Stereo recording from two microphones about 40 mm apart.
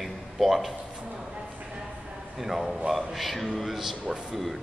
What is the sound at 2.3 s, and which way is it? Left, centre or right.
A man's voice, centre.